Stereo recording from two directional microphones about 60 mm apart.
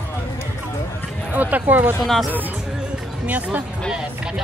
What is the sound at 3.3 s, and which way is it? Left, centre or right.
Speech, right.